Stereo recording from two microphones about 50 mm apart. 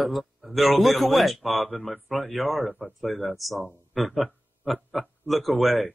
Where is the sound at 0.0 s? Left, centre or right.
Centre.